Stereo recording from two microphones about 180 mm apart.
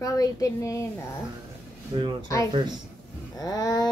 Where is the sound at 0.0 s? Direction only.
20° left (ahead or behind).